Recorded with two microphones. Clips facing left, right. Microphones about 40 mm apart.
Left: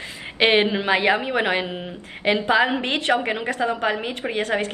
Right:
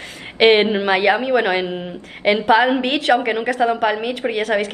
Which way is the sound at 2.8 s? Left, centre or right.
Centre.